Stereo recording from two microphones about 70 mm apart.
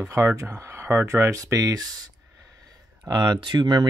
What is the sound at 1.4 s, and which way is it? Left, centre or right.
Speech, right.